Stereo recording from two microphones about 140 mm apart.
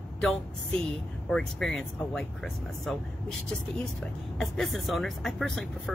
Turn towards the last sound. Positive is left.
turn(degrees=0)  # may be behind; listen again after turning